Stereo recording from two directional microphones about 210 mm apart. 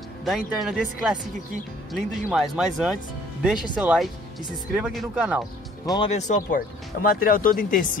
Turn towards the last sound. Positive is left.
turn(degrees=40)  # may be behind; listen again after turning